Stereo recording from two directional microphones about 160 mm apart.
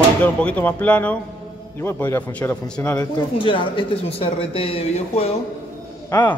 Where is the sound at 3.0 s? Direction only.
30° left (ahead or behind).